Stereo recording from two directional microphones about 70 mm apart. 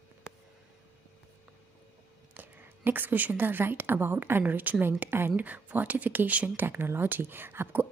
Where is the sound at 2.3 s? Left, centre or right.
Right.